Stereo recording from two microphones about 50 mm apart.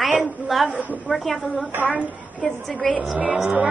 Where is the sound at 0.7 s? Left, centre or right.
Right.